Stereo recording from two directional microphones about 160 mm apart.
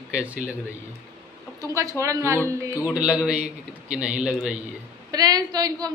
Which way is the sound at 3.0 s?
5° right (ahead or behind).